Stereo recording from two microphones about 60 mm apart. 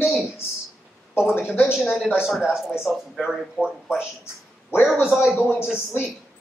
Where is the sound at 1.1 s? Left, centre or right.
Left.